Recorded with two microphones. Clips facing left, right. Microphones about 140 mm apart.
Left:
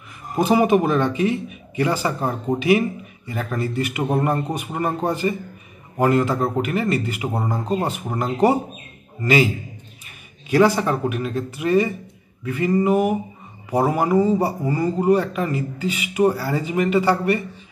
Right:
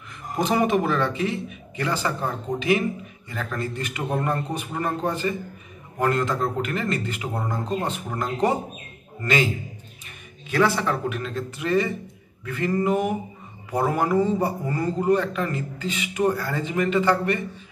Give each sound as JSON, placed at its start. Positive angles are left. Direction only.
{"t": 0.4, "sound": "speech", "side_deg": 10}
{"t": 3.3, "sound": "a man's voice", "side_deg": 15}
{"t": 5.9, "sound": "speech", "side_deg": 10}
{"t": 10.5, "sound": "speech", "side_deg": 15}